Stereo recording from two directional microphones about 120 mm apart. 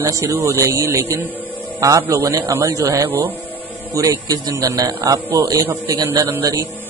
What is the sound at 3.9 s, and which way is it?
A man's voice, 30° right (ahead or behind).